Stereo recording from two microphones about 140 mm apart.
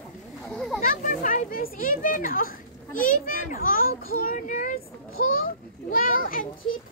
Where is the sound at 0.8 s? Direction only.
75° left (ahead or behind).